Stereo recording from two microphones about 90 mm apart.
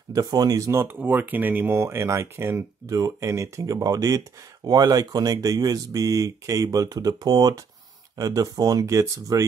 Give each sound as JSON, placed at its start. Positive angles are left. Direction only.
{"t": 0.1, "sound": "speech", "side_deg": -45}
{"t": 1.0, "sound": "speech", "side_deg": -20}